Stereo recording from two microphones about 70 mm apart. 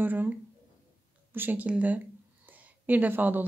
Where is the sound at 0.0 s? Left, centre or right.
Right.